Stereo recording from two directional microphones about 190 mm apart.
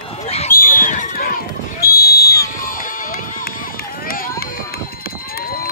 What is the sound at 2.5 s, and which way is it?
Run, 45° left (ahead or behind).